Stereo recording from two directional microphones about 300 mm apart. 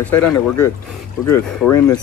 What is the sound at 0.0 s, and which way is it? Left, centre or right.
Speech, centre.